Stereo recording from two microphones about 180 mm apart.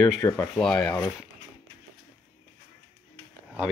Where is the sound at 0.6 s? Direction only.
5° left (ahead or behind).